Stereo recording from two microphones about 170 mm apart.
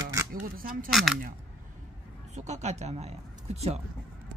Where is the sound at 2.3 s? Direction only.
40° right (ahead or behind).